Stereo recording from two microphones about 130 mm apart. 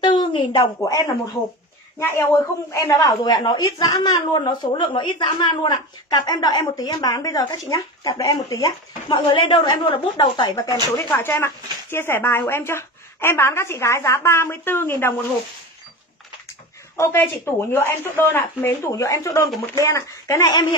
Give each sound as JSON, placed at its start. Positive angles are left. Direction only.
{"t": 0.0, "sound": "a woman's voice", "side_deg": 40}
{"t": 9.3, "sound": "a woman's voice", "side_deg": 40}
{"t": 16.9, "sound": "speech", "side_deg": 20}